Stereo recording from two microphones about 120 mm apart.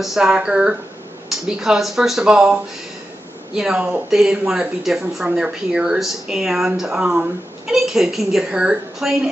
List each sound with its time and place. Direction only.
0.0 s speech: 5° right (ahead or behind)